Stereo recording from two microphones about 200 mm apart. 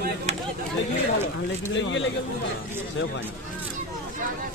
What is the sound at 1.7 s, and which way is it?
Speech, 65° left (ahead or behind).